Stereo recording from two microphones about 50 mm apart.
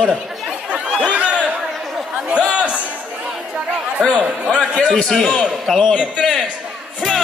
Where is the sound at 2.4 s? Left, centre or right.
Right.